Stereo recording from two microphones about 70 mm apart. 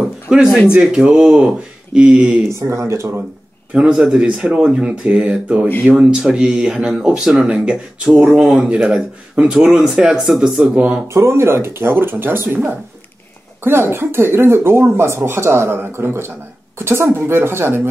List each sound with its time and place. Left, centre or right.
0.0 s a sound: centre
0.7 s speech: centre
2.5 s speech: right
3.7 s speech: centre
11.1 s speech: right
13.7 s speech: right